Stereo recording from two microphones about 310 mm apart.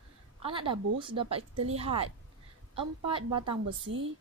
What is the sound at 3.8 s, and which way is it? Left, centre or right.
Speech, right.